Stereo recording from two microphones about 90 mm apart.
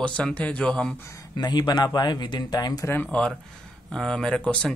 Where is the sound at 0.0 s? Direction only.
10° left (ahead or behind).